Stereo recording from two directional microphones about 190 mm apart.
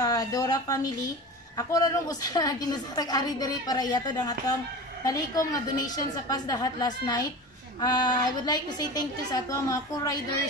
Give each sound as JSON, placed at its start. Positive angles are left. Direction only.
{"t": 0.0, "sound": "a woman's voice", "side_deg": 20}